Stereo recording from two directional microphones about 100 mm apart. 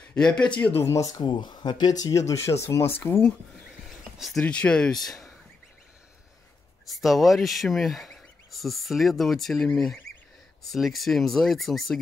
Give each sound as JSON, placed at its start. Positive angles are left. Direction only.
{"t": 0.1, "sound": "speech", "side_deg": 10}
{"t": 1.1, "sound": "speech", "side_deg": 50}
{"t": 4.4, "sound": "speech", "side_deg": 10}
{"t": 6.9, "sound": "speech", "side_deg": 0}